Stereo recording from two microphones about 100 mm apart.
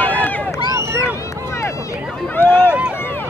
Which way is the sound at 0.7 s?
30° right (ahead or behind).